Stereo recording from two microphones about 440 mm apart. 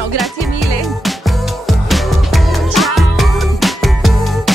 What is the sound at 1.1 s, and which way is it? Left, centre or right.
Music, centre.